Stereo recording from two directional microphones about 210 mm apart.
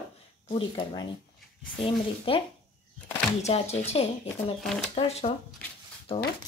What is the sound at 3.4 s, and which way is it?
Speech, 30° left (ahead or behind).